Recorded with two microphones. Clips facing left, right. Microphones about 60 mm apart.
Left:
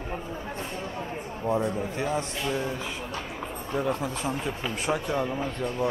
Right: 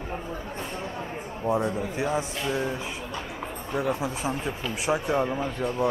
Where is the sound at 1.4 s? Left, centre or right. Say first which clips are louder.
Right 1 dB; centre.